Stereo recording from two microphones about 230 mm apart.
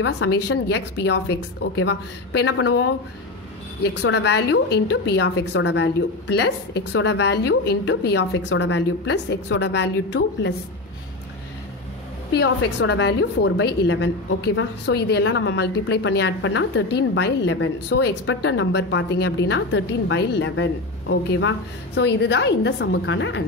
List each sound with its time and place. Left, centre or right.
0.0 s a woman's voice: left
4.0 s a woman's voice: left
12.3 s a woman's voice: left